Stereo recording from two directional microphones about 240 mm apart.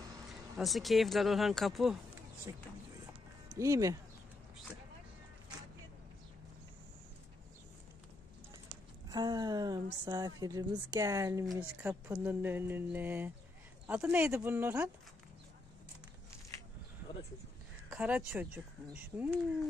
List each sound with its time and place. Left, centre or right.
0.6 s speech: centre
2.5 s speech: centre
9.1 s speech: centre
17.8 s speech: centre